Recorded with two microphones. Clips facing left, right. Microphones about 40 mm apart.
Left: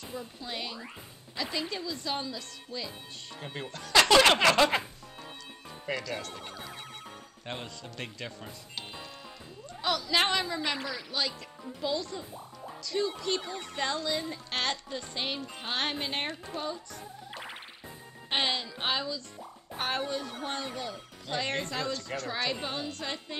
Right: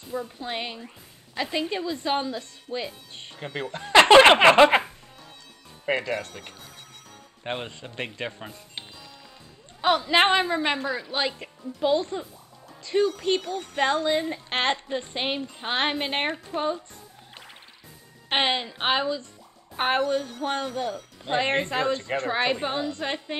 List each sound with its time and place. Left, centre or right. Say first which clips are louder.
0.1 s speech: right 9 dB; right
5.9 s speech: right 8 dB; right
18.3 s speech: right 6 dB; right